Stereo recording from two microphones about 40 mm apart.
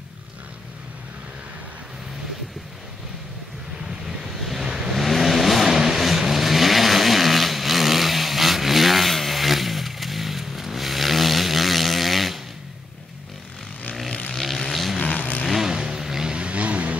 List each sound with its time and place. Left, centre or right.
4.4 s vehicle: centre
4.6 s vehicle: centre
4.9 s vehicle: centre
14.3 s vehicle: centre
15.0 s vehicle: left
15.6 s vehicle: centre
16.3 s vehicle: right